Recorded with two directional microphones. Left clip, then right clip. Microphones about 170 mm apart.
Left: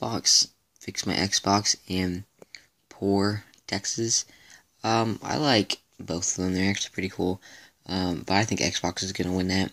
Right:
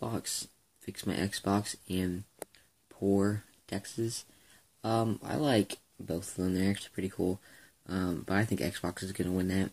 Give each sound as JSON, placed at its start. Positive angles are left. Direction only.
{"t": 0.0, "sound": "clicking", "side_deg": 25}
{"t": 0.8, "sound": "speech", "side_deg": 25}
{"t": 3.2, "sound": "speech", "side_deg": 20}